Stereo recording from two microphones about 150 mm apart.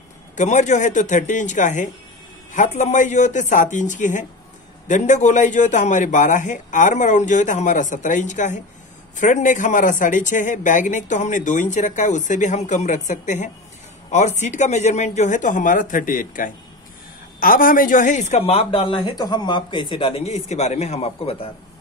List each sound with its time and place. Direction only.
0.4 s speech: 55° left (ahead or behind)